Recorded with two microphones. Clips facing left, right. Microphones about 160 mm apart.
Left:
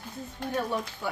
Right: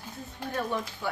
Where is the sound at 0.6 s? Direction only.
10° left (ahead or behind).